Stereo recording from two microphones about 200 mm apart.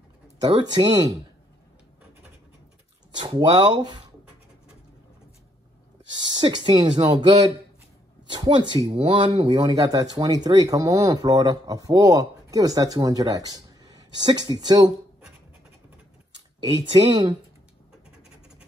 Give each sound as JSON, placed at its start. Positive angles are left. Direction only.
{"t": 0.4, "sound": "speech", "side_deg": -20}
{"t": 3.2, "sound": "speech", "side_deg": -20}
{"t": 6.2, "sound": "speech", "side_deg": -20}
{"t": 8.4, "sound": "speech", "side_deg": -20}
{"t": 16.9, "sound": "speech", "side_deg": -20}